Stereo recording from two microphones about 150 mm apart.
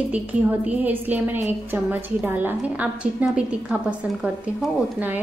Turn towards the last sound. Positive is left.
turn(degrees=-10)  # may be behind; listen again after turning